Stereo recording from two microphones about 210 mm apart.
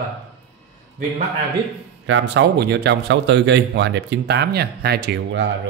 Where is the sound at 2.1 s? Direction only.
60° right (ahead or behind).